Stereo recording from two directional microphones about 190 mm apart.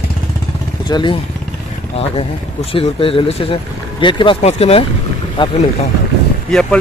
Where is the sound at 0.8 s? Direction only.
25° left (ahead or behind).